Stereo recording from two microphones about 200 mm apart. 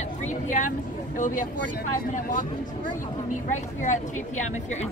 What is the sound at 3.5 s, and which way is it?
Speech, 35° left (ahead or behind).